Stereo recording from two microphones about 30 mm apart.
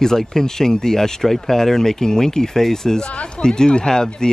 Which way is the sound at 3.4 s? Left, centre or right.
Left.